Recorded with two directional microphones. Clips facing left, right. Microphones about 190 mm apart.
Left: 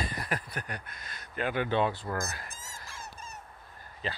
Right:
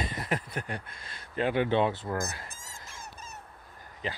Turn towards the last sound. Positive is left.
turn(degrees=-15)  # may be behind; listen again after turning